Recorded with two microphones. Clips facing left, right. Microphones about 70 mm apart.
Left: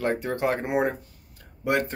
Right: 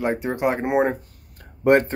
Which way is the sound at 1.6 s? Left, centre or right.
Right.